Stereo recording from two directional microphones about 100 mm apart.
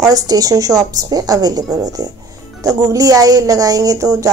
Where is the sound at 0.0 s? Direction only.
40° right (ahead or behind).